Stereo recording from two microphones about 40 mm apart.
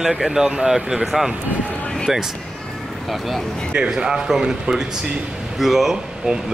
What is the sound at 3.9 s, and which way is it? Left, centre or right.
Speech, centre.